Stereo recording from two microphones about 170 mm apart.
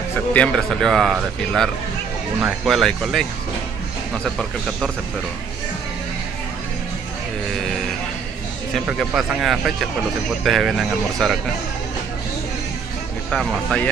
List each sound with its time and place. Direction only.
0.3 s speech: 5° left (ahead or behind)
8.7 s speech: centre (ahead or behind)
13.3 s speech: centre (ahead or behind)